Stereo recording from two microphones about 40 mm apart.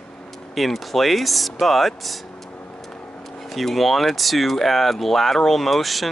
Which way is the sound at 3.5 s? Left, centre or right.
Centre.